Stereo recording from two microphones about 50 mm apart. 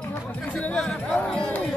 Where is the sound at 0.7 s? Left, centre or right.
Centre.